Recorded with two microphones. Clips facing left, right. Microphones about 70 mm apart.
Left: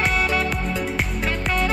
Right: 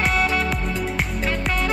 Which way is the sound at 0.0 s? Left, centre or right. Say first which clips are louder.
Even; centre.